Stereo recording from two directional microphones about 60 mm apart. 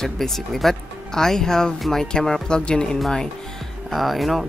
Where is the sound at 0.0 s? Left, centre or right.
Centre.